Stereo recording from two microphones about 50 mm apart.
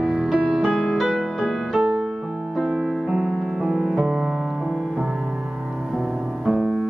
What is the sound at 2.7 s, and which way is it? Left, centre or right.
Music, centre.